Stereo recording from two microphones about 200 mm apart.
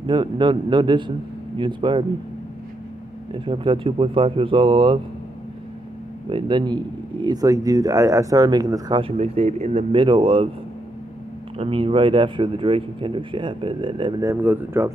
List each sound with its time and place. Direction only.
0.0 s speech: 25° right (ahead or behind)
3.3 s speech: 25° right (ahead or behind)
6.2 s speech: 25° right (ahead or behind)
11.5 s speech: 30° right (ahead or behind)
14.3 s speech: 10° right (ahead or behind)